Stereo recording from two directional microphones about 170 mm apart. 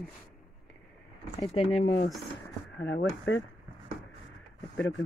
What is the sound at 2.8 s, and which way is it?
Speech, 90° left.